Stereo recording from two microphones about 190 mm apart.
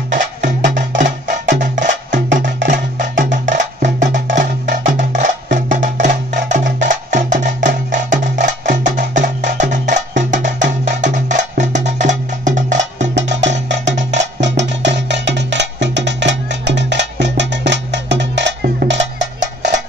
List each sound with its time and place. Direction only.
0.1 s music: 40° right (ahead or behind)
13.1 s music: 70° right (ahead or behind)
13.8 s music: 40° right (ahead or behind)
14.4 s music: 70° right (ahead or behind)